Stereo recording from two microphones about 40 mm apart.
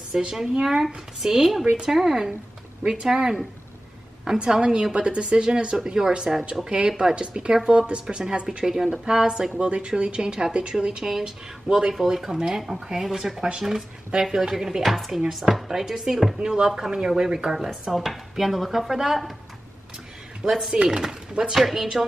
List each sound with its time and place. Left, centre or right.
0.1 s speech: centre
4.4 s speech: right
8.5 s speech: centre
11.1 s speech: centre
17.6 s speech: centre
20.4 s speech: centre
20.7 s speech: right; by 21.8 s centre